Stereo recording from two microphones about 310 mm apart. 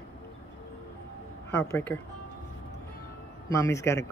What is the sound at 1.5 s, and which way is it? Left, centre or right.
Speech, centre.